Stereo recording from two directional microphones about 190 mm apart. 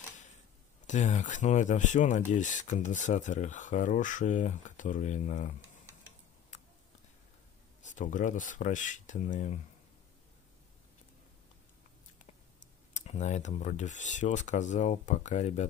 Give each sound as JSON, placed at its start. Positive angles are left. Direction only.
{"t": 0.8, "sound": "speech", "side_deg": 40}
{"t": 6.5, "sound": "a sound", "side_deg": 40}
{"t": 7.8, "sound": "speech", "side_deg": 40}
{"t": 12.9, "sound": "speech", "side_deg": 35}